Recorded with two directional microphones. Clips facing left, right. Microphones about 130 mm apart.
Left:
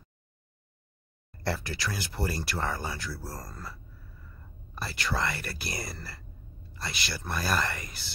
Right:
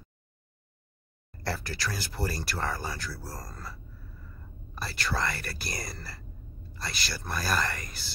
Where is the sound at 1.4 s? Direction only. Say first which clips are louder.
Left 1 dB; 25° left (ahead or behind).